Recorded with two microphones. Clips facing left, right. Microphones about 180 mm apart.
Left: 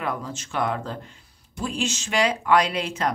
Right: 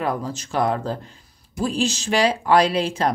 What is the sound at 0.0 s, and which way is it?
Speech, 35° right (ahead or behind).